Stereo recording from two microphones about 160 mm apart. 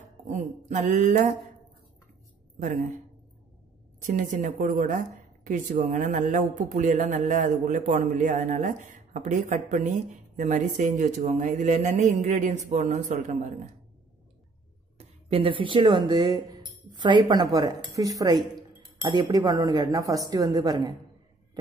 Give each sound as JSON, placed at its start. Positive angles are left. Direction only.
{"t": 0.3, "sound": "a woman's voice", "side_deg": -50}
{"t": 4.0, "sound": "a woman's voice", "side_deg": -55}
{"t": 15.0, "sound": "a woman's voice", "side_deg": -35}